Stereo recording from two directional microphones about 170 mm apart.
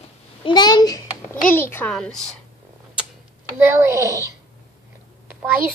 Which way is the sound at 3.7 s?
15° right (ahead or behind).